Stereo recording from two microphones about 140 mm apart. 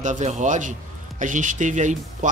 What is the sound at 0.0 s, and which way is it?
Speech, 60° right (ahead or behind).